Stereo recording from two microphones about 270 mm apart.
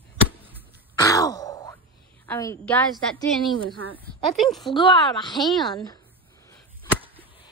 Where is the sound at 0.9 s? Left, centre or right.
Centre.